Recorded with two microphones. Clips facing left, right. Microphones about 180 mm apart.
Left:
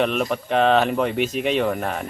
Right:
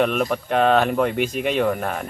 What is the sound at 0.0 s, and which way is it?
Speech, centre (ahead or behind).